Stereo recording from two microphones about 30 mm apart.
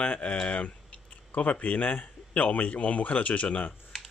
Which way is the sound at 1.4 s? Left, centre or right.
Left.